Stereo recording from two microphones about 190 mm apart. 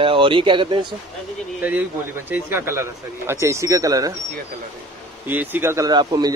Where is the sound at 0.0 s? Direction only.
25° right (ahead or behind).